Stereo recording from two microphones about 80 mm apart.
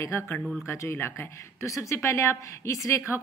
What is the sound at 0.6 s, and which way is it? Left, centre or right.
Speech, left.